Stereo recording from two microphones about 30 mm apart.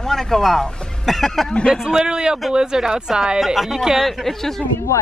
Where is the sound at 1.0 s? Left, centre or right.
Centre.